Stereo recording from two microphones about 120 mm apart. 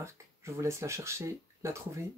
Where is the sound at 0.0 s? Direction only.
25° right (ahead or behind).